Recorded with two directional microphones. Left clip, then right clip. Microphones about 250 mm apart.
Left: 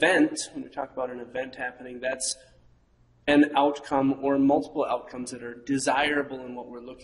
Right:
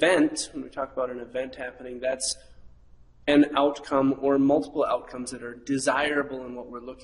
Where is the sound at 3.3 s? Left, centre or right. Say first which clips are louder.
Even; centre.